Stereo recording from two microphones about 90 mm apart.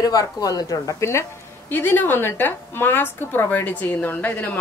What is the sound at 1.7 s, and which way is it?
A woman's voice, 20° left (ahead or behind).